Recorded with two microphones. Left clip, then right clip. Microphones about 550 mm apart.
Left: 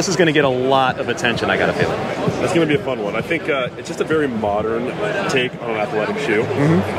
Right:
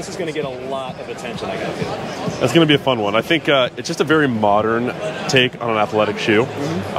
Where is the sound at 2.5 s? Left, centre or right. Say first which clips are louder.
Right 6 dB; right.